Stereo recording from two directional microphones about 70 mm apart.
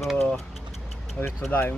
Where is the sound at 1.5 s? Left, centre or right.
Left.